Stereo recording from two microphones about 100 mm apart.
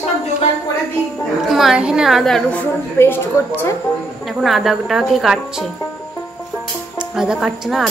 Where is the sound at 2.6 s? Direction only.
20° left (ahead or behind).